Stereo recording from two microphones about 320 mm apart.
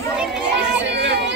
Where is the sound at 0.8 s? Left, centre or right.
Right.